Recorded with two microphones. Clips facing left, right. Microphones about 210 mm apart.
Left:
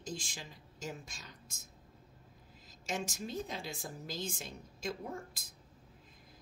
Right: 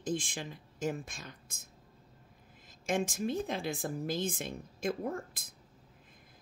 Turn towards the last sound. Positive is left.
turn(degrees=-55)  # may be behind; listen again after turning